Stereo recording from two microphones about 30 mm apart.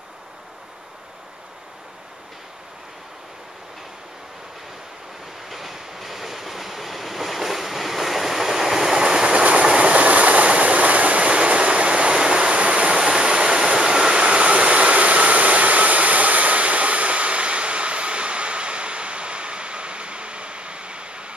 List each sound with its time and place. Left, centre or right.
5.5 s train: centre
9.0 s train: right
9.4 s train: right
9.9 s train: right
13.0 s a sound: right